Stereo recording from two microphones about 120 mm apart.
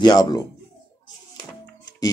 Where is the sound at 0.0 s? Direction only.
35° left (ahead or behind).